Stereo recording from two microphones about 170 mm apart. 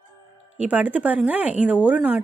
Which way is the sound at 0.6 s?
10° right (ahead or behind).